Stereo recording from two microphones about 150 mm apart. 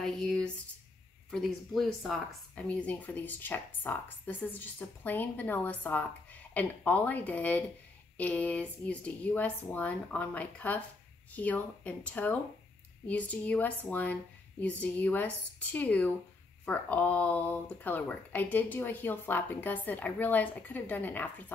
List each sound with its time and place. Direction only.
0.0 s speech: centre (ahead or behind)